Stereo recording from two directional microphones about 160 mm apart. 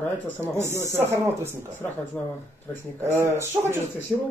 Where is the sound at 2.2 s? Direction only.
10° left (ahead or behind).